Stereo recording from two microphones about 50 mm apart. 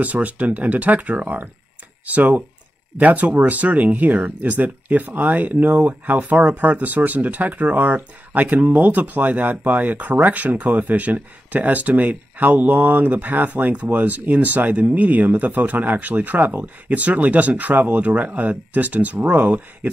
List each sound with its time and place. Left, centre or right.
0.0 s speech: right